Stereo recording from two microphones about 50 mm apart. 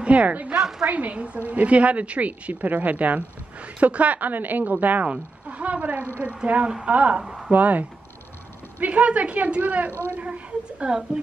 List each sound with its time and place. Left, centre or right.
0.0 s a woman's voice: right
0.6 s a woman's voice: centre
0.8 s a woman's voice: right
7.2 s speech: centre
7.5 s a woman's voice: right